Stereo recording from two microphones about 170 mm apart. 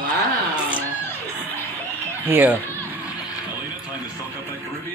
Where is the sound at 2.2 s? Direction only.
10° right (ahead or behind).